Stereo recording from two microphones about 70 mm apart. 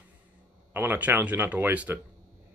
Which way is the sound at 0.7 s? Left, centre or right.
Right.